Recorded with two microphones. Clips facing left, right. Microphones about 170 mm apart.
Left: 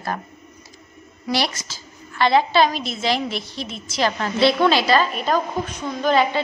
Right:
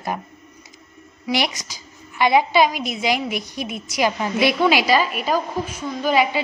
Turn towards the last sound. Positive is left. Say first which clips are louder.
# left 1 dB
turn(degrees=-10)  # may be behind; listen again after turning